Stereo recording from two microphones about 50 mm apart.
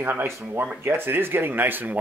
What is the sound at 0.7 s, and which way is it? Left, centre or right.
Speech, right.